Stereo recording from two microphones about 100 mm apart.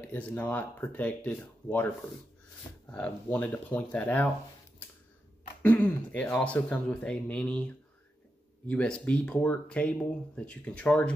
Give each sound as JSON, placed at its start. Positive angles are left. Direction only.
{"t": 0.0, "sound": "speech", "side_deg": 15}
{"t": 2.9, "sound": "speech", "side_deg": 15}
{"t": 5.6, "sound": "speech", "side_deg": 15}